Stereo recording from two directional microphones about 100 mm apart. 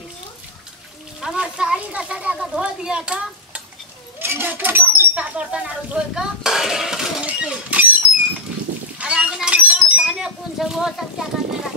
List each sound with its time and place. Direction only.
1.2 s speech: 10° right (ahead or behind)
4.2 s speech: 20° right (ahead or behind)
8.9 s a sound: 10° right (ahead or behind)
10.1 s speech: 5° right (ahead or behind)